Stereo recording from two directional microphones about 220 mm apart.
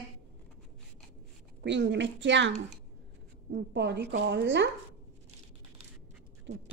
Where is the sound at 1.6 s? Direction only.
55° right (ahead or behind).